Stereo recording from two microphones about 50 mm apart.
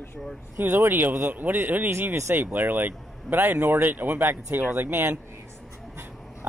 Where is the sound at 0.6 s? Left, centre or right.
Right.